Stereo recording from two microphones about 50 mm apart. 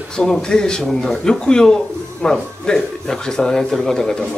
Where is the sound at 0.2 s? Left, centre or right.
Centre.